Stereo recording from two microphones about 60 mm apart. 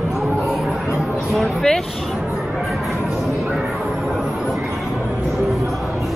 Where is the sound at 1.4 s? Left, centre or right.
Centre.